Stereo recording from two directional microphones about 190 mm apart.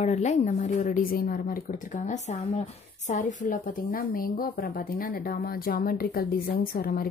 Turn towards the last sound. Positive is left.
turn(degrees=50)  # may be behind; listen again after turning